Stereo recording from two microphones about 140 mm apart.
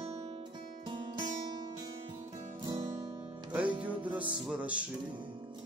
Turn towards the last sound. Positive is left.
turn(degrees=-10)  # may be behind; listen again after turning